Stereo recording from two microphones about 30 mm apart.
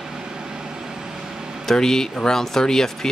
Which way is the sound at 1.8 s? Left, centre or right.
Centre.